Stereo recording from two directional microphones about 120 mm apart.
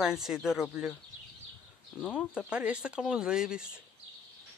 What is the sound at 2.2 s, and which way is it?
Speech, 10° right (ahead or behind).